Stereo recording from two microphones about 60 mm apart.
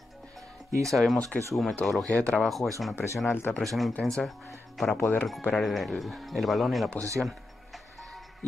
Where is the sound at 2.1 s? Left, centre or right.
Left.